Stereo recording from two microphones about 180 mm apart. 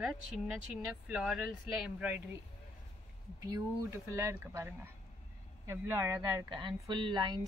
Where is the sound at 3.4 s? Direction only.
20° right (ahead or behind).